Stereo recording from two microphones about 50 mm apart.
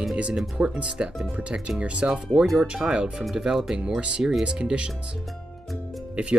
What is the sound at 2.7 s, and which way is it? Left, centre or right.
Speech, centre.